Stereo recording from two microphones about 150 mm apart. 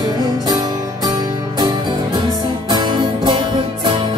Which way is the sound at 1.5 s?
30° right (ahead or behind).